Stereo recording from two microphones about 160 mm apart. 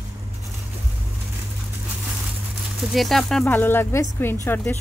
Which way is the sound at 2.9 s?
Centre (ahead or behind).